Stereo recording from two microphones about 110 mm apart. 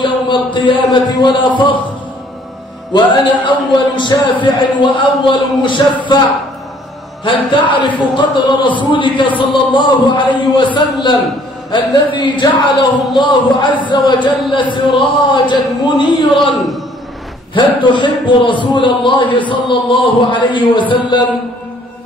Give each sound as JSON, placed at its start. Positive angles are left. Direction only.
{"t": 0.0, "sound": "a sound", "side_deg": 45}
{"t": 1.2, "sound": "a man's voice", "side_deg": 45}
{"t": 3.4, "sound": "a man's voice", "side_deg": 45}
{"t": 16.5, "sound": "a man's voice", "side_deg": 0}
{"t": 17.6, "sound": "a man's voice", "side_deg": 45}